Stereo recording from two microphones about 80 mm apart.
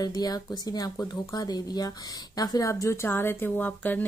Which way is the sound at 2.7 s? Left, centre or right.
Left.